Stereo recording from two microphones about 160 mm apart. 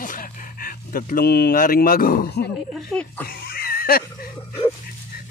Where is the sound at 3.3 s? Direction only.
70° left (ahead or behind).